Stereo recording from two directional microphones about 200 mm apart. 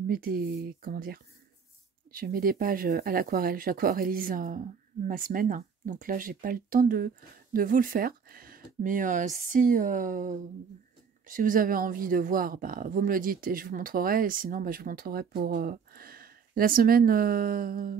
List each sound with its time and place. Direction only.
0.0 s speech: 45° right (ahead or behind)